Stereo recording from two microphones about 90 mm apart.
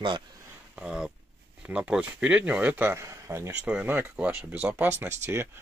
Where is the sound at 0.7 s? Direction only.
10° right (ahead or behind).